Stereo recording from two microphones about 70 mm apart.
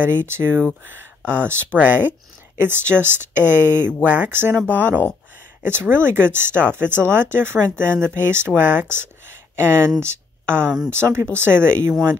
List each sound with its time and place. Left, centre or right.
0.0 s speech: right